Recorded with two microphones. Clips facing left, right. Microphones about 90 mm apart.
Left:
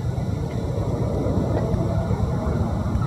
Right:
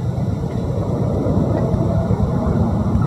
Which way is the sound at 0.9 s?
15° right (ahead or behind).